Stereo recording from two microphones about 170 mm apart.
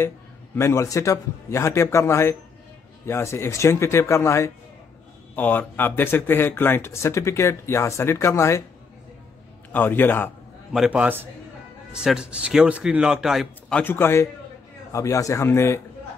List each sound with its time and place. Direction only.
0.6 s speech: 15° left (ahead or behind)
9.7 s speech: 10° left (ahead or behind)
10.7 s a man's voice: 5° right (ahead or behind); by 15.8 s 15° left (ahead or behind)